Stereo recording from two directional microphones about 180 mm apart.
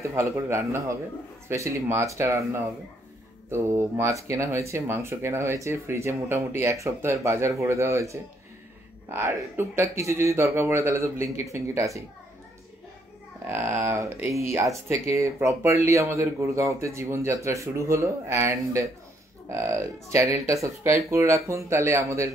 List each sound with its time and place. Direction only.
0.0 s speech: 15° right (ahead or behind)
13.5 s speech: 15° right (ahead or behind)